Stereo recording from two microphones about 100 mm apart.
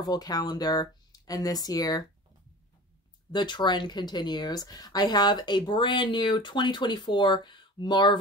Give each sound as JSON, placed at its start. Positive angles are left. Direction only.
{"t": 0.0, "sound": "speech", "side_deg": 40}
{"t": 3.3, "sound": "speech", "side_deg": 50}